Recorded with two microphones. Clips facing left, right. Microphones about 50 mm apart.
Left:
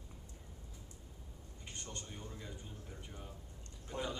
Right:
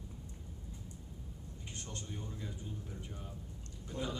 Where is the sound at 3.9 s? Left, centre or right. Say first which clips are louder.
Even; left.